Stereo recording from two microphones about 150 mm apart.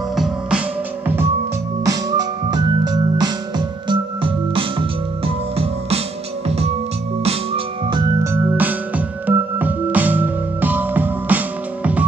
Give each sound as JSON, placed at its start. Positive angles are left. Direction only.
{"t": 0.1, "sound": "music", "side_deg": 0}
{"t": 1.0, "sound": "music", "side_deg": -15}
{"t": 1.9, "sound": "organ", "side_deg": -25}
{"t": 7.2, "sound": "organ", "side_deg": -35}
{"t": 8.2, "sound": "music", "side_deg": -15}